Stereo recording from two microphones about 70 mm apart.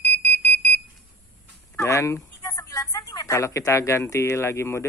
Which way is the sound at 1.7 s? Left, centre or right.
Left.